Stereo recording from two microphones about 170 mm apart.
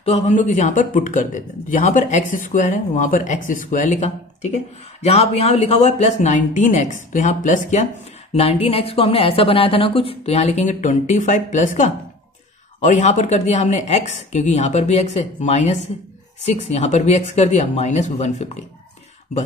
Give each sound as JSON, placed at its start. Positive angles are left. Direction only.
{"t": 0.0, "sound": "speech", "side_deg": 40}
{"t": 8.3, "sound": "a woman's voice", "side_deg": 35}